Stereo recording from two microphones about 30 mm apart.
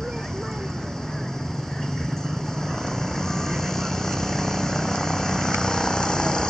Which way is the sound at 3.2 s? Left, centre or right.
Centre.